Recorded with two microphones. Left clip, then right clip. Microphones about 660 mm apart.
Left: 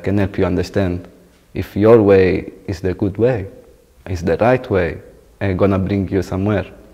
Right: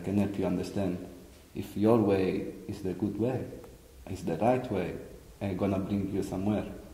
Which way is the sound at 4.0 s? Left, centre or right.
Left.